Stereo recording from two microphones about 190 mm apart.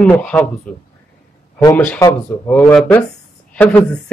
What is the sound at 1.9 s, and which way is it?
Speech, 15° left (ahead or behind).